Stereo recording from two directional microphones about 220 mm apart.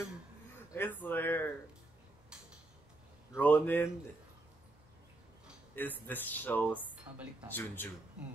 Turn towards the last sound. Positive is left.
turn(degrees=10)  # may be behind; listen again after turning